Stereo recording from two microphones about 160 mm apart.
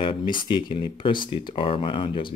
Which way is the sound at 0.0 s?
30° left (ahead or behind).